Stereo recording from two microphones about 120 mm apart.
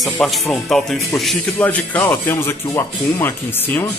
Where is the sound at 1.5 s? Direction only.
15° left (ahead or behind).